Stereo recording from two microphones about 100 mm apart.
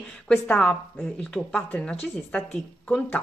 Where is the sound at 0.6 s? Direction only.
5° left (ahead or behind).